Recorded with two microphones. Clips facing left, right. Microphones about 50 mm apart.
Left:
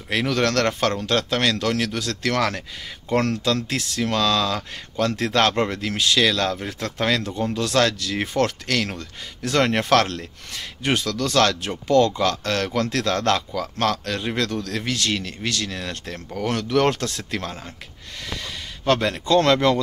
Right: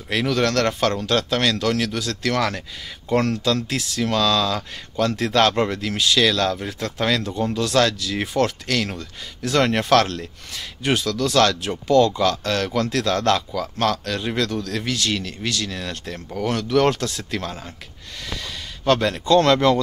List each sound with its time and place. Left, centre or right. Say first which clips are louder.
0.3 s speech: right 1 dB; left
4.0 s speech: right 1 dB; left
8.4 s speech: right 1 dB; left
11.9 s speech: right 1 dB; left
16.5 s speech: right 1 dB; left
18.2 s speech: even; left